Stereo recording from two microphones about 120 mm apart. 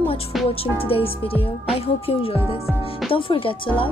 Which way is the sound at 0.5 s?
55° left (ahead or behind).